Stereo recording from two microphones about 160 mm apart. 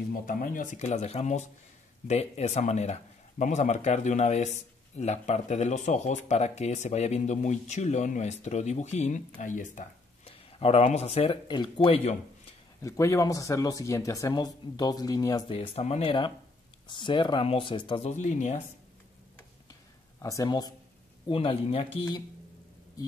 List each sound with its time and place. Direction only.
0.1 s speech: 60° left (ahead or behind); by 11.3 s 40° left (ahead or behind)
11.4 s speech: 30° left (ahead or behind)
12.8 s speech: 20° left (ahead or behind)
15.5 s speech: 35° left (ahead or behind)
19.3 s tick-tock: 20° left (ahead or behind)
21.3 s speech: 35° left (ahead or behind)